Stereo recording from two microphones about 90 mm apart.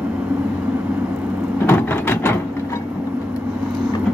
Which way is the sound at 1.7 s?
25° left (ahead or behind).